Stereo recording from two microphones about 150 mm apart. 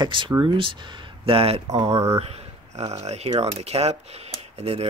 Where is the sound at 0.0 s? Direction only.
35° right (ahead or behind).